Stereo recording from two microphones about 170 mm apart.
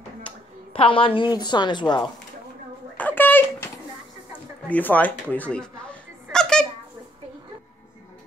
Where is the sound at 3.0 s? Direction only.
10° left (ahead or behind).